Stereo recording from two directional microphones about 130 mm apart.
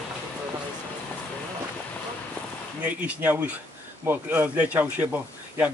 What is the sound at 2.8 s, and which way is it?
A man's voice, 10° right (ahead or behind).